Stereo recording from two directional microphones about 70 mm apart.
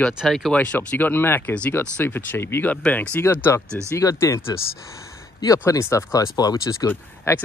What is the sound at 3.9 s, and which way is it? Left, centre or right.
Speech, left.